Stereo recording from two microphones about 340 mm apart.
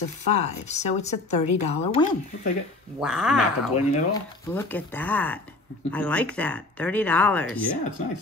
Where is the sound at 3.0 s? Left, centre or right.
Centre.